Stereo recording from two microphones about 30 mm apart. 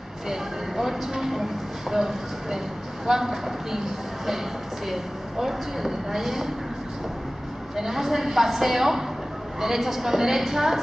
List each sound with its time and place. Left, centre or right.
0.3 s speech: centre
4.8 s speech: centre
7.7 s speech: centre